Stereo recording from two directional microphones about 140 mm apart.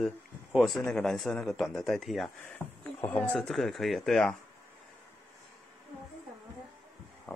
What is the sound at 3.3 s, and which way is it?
Speech, centre (ahead or behind).